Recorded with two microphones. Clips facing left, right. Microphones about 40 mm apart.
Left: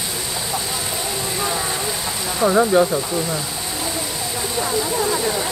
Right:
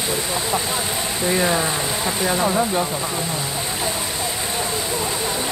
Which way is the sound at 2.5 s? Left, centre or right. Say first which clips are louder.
Left 5 dB; left.